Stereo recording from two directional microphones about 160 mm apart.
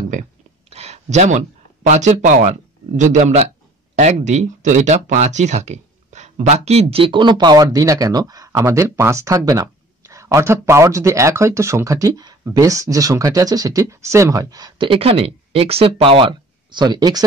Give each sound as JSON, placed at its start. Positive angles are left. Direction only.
{"t": 0.7, "sound": "a man's voice", "side_deg": -40}